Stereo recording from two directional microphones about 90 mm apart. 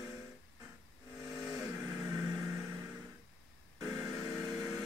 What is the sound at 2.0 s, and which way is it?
Vehicle, 40° right (ahead or behind).